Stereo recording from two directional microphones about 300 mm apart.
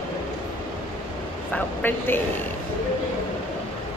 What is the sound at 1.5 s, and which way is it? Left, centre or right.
Speech, centre.